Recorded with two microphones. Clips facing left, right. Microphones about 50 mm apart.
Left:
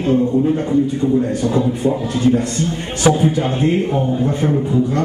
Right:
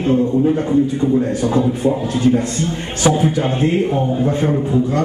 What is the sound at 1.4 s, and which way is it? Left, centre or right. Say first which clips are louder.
Speech: right 1 dB; centre.